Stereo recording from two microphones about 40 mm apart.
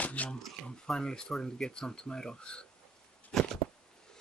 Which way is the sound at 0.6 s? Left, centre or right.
Centre.